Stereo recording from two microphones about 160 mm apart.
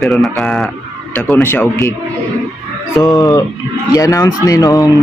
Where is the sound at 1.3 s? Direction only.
15° left (ahead or behind).